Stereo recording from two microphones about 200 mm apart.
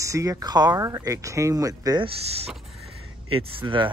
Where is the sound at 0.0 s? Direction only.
15° right (ahead or behind).